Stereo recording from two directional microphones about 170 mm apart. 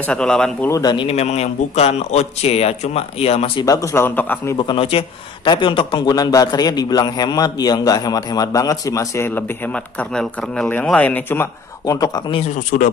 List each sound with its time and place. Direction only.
0.1 s speech: 5° left (ahead or behind)
0.7 s a man's voice: 20° left (ahead or behind)
0.9 s a man's voice: 35° left (ahead or behind)
3.6 s a man's voice: 20° left (ahead or behind)
4.6 s a man's voice: 30° left (ahead or behind); by 11.4 s 10° left (ahead or behind)
11.9 s a man's voice: 25° left (ahead or behind)